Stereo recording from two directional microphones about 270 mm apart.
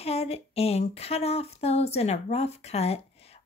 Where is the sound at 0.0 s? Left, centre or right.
Left.